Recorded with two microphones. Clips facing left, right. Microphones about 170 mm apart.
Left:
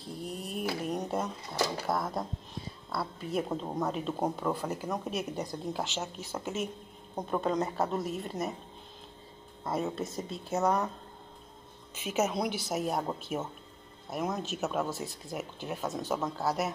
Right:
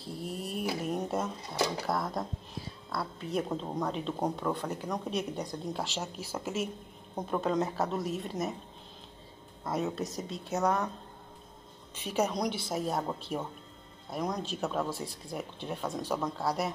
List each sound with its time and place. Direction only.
0.0 s speech: centre (ahead or behind)
9.7 s speech: centre (ahead or behind)
11.9 s speech: 5° left (ahead or behind)